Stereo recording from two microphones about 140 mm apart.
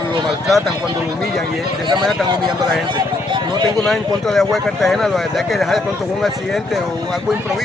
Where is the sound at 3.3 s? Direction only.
30° right (ahead or behind).